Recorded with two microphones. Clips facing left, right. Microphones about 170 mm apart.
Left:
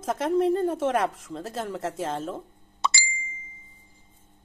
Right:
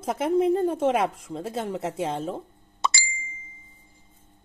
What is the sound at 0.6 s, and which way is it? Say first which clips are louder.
Speech: right 2 dB; centre (ahead or behind).